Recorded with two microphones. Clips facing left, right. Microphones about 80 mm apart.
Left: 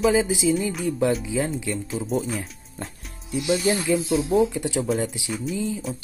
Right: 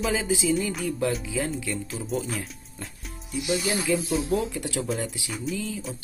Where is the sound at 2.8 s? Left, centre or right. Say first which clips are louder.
Left 5 dB; left.